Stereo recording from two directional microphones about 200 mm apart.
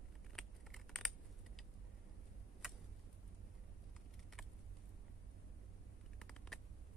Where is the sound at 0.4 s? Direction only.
Centre (ahead or behind).